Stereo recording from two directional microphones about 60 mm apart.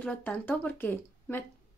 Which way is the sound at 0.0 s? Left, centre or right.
Left.